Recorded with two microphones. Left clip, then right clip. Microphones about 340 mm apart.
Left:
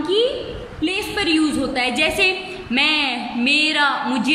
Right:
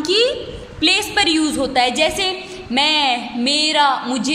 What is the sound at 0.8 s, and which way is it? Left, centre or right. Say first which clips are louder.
A woman's voice: right 6 dB; right.